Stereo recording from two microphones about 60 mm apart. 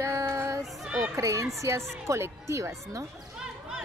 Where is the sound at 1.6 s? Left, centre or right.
Right.